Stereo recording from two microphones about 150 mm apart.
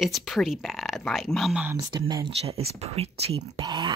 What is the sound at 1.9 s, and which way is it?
Speech, 30° right (ahead or behind).